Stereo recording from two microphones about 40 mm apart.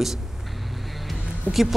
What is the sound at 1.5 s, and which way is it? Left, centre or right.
Speech, right.